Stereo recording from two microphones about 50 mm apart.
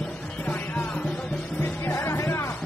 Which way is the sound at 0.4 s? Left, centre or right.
Left.